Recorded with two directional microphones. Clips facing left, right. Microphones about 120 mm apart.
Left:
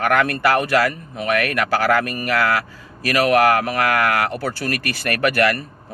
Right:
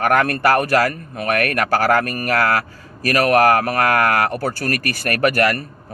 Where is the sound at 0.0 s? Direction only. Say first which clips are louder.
Right 1 dB; 45° right (ahead or behind).